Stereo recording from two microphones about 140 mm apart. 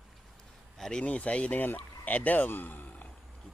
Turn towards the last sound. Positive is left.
turn(degrees=10)  # may be behind; listen again after turning